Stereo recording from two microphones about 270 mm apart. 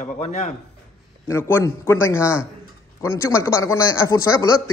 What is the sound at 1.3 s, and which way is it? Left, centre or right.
Speech, centre.